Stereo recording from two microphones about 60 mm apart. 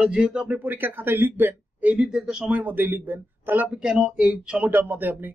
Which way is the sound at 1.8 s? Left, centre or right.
Right.